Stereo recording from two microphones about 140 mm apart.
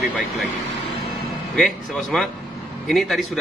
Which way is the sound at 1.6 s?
Centre (ahead or behind).